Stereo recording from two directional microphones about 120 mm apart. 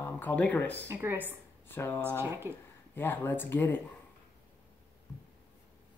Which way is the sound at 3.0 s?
15° left (ahead or behind).